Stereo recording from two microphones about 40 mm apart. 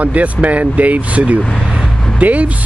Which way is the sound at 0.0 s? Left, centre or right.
Right.